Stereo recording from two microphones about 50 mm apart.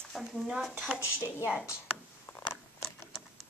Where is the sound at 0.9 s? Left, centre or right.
Left.